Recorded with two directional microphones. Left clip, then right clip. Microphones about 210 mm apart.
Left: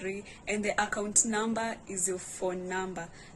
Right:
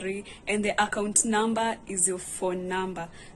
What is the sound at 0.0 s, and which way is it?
Speech, centre (ahead or behind).